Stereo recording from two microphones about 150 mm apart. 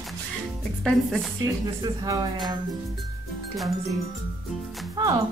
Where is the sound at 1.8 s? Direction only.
25° right (ahead or behind).